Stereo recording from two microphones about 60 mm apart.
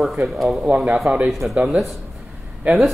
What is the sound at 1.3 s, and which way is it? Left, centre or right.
Speech, centre.